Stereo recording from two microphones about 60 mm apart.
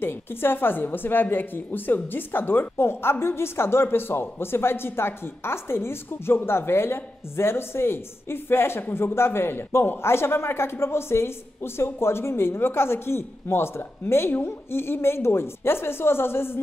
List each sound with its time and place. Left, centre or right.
0.0 s a woman's voice: left